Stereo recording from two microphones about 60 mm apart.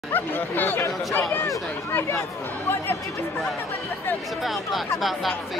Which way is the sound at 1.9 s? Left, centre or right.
Left.